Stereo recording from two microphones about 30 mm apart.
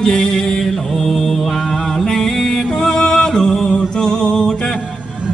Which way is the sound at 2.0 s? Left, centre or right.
Centre.